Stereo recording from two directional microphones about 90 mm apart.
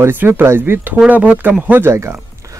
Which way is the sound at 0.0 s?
25° right (ahead or behind).